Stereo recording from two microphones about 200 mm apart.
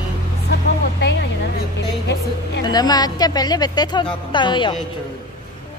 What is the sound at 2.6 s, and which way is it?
Speech, 20° left (ahead or behind).